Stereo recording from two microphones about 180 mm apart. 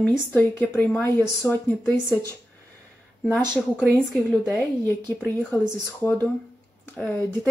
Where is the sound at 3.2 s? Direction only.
5° left (ahead or behind).